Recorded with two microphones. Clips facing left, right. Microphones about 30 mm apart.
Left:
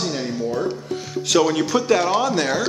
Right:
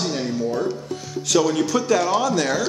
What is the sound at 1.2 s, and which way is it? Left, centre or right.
Speech, left.